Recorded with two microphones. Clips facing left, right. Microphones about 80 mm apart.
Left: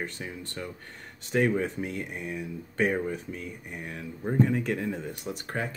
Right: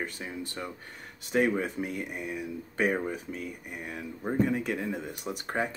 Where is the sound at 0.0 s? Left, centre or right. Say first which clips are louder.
Even; centre.